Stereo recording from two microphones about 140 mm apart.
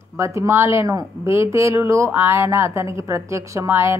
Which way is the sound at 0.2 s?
20° right (ahead or behind).